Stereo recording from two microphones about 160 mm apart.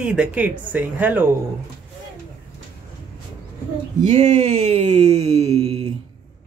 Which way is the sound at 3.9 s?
50° right (ahead or behind).